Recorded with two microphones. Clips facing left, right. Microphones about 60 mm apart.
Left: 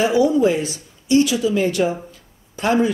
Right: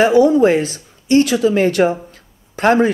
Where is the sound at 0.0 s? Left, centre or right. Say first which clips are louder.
Right 5 dB; right.